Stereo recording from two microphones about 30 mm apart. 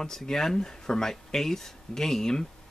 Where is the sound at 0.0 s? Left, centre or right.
Centre.